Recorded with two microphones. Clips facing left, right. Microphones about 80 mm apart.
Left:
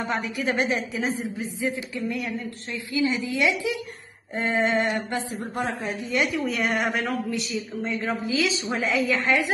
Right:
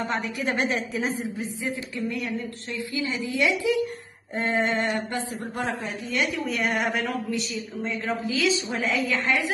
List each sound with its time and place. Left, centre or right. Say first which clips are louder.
0.0 s speech: left 1 dB; centre
3.3 s a man's voice: right 4 dB; left
4.4 s speech: left 1 dB; centre
5.1 s a man's voice: left 1 dB; left
6.4 s speech: left 1 dB; centre